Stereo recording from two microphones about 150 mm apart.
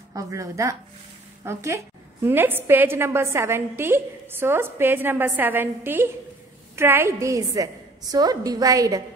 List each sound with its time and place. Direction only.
0.1 s a woman's voice: 20° right (ahead or behind)